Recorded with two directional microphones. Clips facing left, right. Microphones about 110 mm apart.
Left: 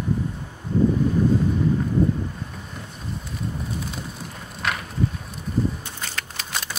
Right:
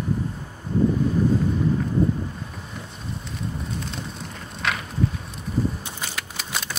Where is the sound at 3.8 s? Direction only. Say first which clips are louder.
Even; 5° left (ahead or behind).